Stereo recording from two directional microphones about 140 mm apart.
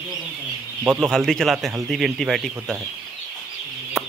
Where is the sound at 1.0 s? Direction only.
5° left (ahead or behind).